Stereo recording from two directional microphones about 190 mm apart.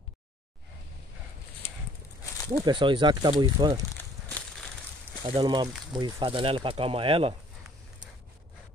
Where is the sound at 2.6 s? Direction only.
25° right (ahead or behind).